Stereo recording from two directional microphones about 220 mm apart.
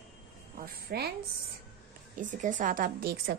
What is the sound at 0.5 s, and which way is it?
Speech, 45° right (ahead or behind).